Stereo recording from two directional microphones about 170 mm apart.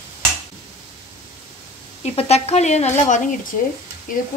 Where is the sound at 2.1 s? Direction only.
40° left (ahead or behind).